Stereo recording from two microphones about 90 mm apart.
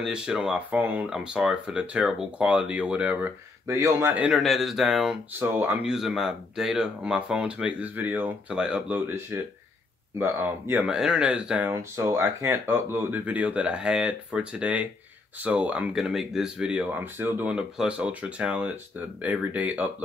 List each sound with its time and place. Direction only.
0.0 s speech: 10° right (ahead or behind)
1.1 s speech: 10° right (ahead or behind)
3.6 s speech: 35° right (ahead or behind)
4.3 s speech: centre (ahead or behind)
5.4 s speech: 20° right (ahead or behind)
5.9 s speech: 5° right (ahead or behind)
8.9 s speech: 25° right (ahead or behind)
10.8 s speech: 10° right (ahead or behind)
11.7 s speech: 30° right (ahead or behind)
15.9 s speech: 5° right (ahead or behind); by 17.6 s 20° right (ahead or behind)
17.6 s speech: 10° right (ahead or behind)